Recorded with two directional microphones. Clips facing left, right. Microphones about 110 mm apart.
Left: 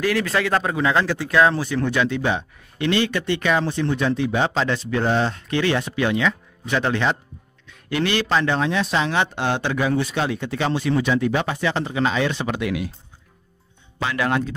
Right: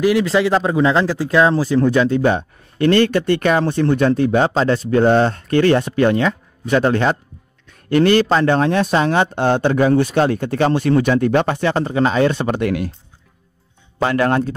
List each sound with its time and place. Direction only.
0.0 s speech: 20° right (ahead or behind); by 12.9 s 50° right (ahead or behind)
14.0 s speech: 45° right (ahead or behind)